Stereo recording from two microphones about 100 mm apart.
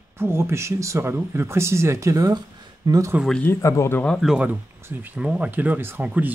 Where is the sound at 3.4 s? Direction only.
25° left (ahead or behind).